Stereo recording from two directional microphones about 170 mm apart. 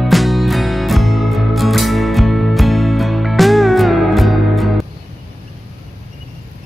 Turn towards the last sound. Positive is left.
turn(degrees=0)  # may be behind; listen again after turning